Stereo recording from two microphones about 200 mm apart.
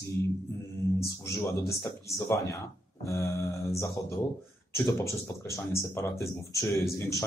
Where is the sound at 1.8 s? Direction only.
15° left (ahead or behind).